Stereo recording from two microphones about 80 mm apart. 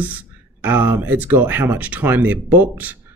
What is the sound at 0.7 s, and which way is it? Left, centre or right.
Speech, right.